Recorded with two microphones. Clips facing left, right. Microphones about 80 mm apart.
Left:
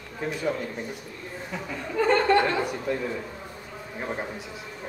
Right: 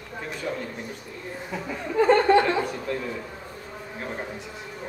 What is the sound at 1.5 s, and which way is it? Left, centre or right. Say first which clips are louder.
Speech: right 3 dB; centre.